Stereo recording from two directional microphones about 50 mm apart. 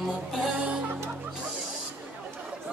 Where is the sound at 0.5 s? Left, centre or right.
Right.